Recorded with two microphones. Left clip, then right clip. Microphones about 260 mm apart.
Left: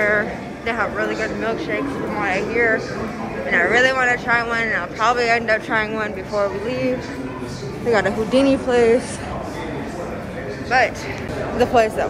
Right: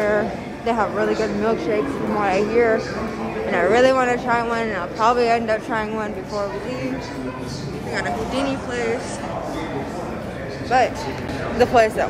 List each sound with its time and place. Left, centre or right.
0.7 s speech: centre
7.9 s a woman's voice: centre
10.7 s speech: centre
11.5 s a woman's voice: centre